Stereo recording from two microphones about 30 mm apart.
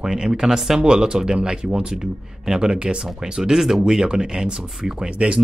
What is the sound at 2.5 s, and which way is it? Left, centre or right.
Speech, right.